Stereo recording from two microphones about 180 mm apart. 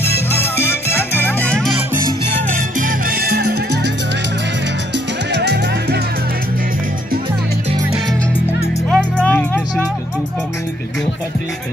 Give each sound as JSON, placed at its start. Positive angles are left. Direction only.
{"t": 0.3, "sound": "music", "side_deg": 10}
{"t": 2.5, "sound": "music", "side_deg": -50}
{"t": 5.3, "sound": "music", "side_deg": -70}
{"t": 8.9, "sound": "music", "side_deg": 5}